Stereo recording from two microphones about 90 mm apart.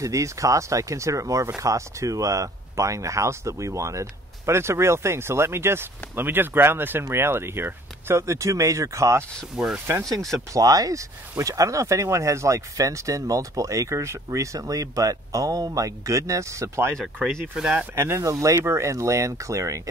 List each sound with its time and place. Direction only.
0.0 s speech: 35° right (ahead or behind)
9.6 s speech: 5° right (ahead or behind)
10.5 s speech: 40° right (ahead or behind)
17.6 s speech: 5° right (ahead or behind)
17.9 s speech: 30° right (ahead or behind)